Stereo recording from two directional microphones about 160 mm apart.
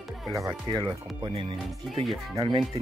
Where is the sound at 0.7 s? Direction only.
30° right (ahead or behind).